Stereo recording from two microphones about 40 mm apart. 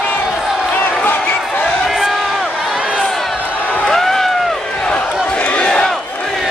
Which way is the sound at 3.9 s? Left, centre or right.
Centre.